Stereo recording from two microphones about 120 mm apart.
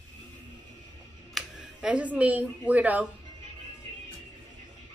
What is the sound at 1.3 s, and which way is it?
Speech, 5° right (ahead or behind).